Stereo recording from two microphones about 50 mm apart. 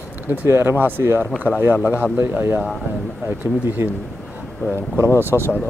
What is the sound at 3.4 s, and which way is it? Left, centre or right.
Speech, right.